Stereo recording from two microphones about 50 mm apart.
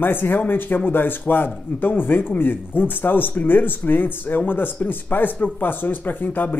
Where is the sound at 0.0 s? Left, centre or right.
Left.